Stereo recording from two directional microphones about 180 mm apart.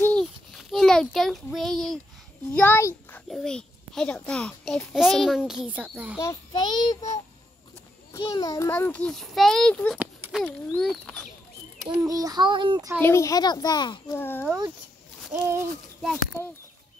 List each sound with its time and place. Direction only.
0.0 s child singing: 5° left (ahead or behind)
2.5 s a child's voice: 10° left (ahead or behind); by 6.1 s 10° right (ahead or behind)
6.1 s a child's voice: 20° left (ahead or behind)
8.2 s a child's voice: 20° left (ahead or behind); by 11.2 s centre (ahead or behind)
11.9 s a child's voice: 20° right (ahead or behind)
13.0 s a child's voice: 15° left (ahead or behind)
14.1 s a child's voice: 10° left (ahead or behind)
15.3 s bird: 15° right (ahead or behind)